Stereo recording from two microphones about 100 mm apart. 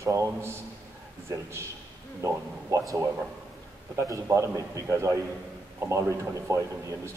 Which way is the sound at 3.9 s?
30° right (ahead or behind).